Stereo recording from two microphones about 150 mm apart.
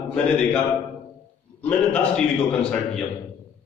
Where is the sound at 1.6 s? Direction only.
10° left (ahead or behind).